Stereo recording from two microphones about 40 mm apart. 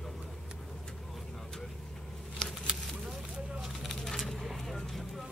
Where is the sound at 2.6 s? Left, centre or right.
Centre.